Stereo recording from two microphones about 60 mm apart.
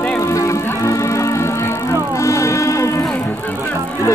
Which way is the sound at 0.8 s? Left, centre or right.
Left.